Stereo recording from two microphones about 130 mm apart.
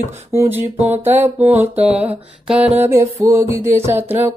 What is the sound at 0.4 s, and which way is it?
Music, 15° right (ahead or behind).